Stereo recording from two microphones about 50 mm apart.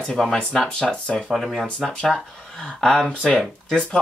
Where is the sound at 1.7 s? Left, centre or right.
Centre.